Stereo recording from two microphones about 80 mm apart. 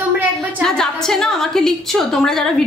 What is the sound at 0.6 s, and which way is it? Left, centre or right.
A woman's voice, centre.